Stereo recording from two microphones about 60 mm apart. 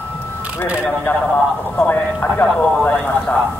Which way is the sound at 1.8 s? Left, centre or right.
Left.